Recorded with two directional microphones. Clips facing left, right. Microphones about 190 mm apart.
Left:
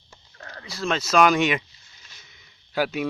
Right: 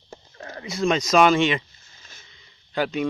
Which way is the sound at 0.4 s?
20° right (ahead or behind).